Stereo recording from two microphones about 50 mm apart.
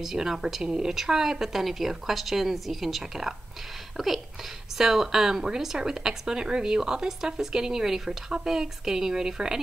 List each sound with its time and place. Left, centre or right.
0.0 s a woman's voice: centre